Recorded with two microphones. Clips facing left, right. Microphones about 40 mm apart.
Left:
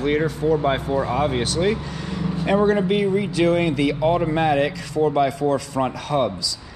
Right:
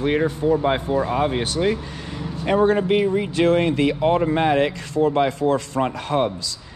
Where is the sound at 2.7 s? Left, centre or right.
Centre.